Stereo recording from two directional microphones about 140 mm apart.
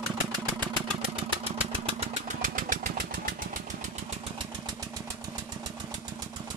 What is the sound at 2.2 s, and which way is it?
Engine, 70° right (ahead or behind).